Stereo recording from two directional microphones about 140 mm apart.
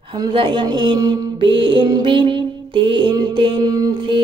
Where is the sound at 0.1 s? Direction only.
35° right (ahead or behind).